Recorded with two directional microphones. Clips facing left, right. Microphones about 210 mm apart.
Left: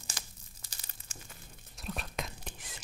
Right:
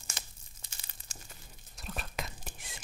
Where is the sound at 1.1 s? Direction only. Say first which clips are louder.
Left 1 dB; 35° right (ahead or behind).